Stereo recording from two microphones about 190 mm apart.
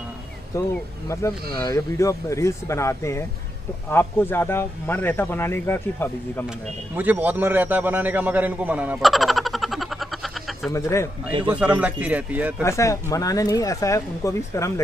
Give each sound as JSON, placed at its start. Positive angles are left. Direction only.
{"t": 0.6, "sound": "speech", "side_deg": 15}
{"t": 7.0, "sound": "a man's voice", "side_deg": -10}
{"t": 10.7, "sound": "speech", "side_deg": 15}
{"t": 11.4, "sound": "speech", "side_deg": -5}
{"t": 12.6, "sound": "speech", "side_deg": 15}